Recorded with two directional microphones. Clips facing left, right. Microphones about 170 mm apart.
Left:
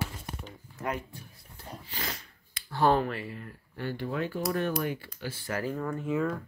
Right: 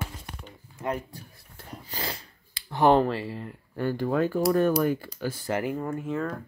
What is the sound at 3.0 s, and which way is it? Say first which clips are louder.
Speech: right 6 dB; 30° right (ahead or behind).